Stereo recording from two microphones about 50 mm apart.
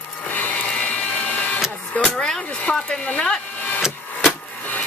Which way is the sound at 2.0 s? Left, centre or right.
Centre.